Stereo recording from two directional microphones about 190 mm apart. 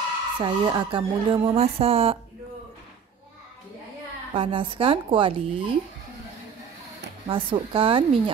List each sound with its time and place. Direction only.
0.4 s speech: 25° right (ahead or behind)
4.3 s speech: 25° right (ahead or behind)
7.2 s speech: 25° right (ahead or behind)